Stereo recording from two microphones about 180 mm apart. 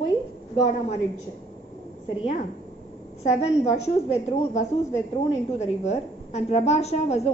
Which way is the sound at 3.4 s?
35° left (ahead or behind).